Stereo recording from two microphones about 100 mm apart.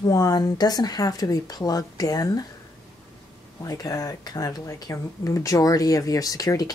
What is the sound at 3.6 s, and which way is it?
Speech, 35° left (ahead or behind).